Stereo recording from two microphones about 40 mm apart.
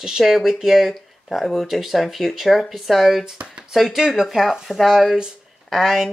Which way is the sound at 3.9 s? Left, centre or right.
Centre.